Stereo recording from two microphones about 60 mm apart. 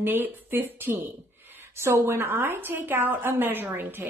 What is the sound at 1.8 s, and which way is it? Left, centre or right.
A woman's voice, right.